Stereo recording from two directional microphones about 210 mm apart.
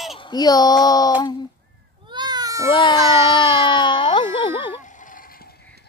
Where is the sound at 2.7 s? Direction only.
20° left (ahead or behind).